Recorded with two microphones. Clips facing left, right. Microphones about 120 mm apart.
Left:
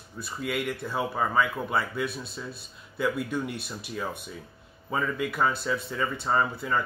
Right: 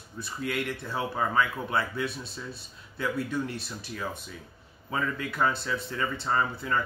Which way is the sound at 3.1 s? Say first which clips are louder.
Even; 15° left (ahead or behind).